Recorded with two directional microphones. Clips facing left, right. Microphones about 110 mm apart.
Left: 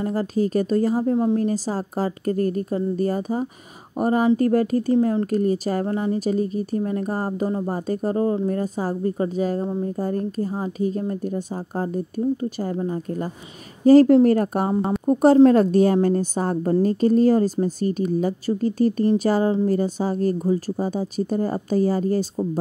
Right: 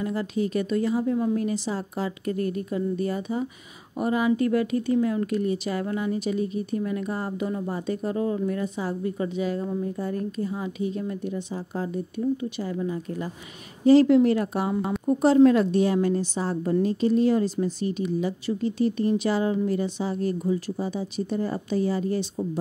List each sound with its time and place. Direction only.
0.0 s a woman's voice: 40° left (ahead or behind)